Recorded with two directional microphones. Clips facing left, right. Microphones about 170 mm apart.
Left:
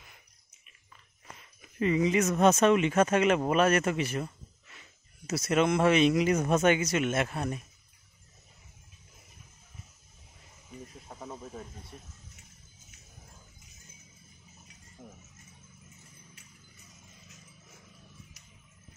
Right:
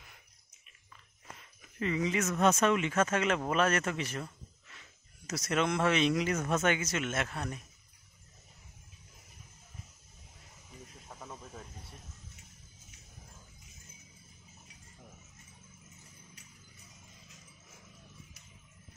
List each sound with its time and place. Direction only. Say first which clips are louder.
1.8 s speech: left 6 dB; 15° left (ahead or behind)
11.1 s snake: left 4 dB; 15° left (ahead or behind)
15.0 s a sound: left 7 dB; 5° left (ahead or behind)